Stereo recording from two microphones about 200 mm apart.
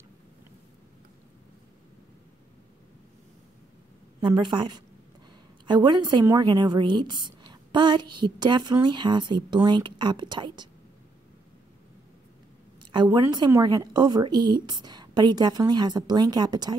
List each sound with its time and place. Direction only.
4.2 s a woman's voice: 25° right (ahead or behind)
12.9 s a woman's voice: 20° right (ahead or behind)